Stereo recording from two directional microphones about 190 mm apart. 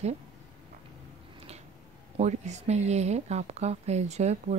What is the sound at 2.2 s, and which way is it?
Speech, 35° right (ahead or behind).